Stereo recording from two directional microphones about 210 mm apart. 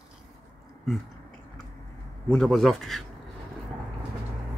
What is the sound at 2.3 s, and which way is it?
Speech, centre (ahead or behind).